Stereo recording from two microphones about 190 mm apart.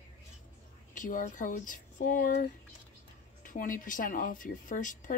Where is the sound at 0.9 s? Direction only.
45° left (ahead or behind).